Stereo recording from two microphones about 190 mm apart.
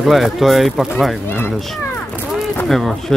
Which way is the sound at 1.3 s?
10° left (ahead or behind).